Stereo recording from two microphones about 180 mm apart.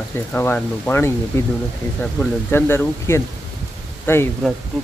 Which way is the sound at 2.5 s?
15° left (ahead or behind).